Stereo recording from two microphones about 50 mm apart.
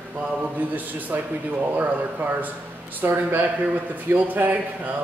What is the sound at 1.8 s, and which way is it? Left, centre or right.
Speech, right.